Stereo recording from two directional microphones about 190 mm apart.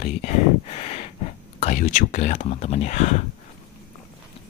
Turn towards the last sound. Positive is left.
turn(degrees=35)  # may be behind; listen again after turning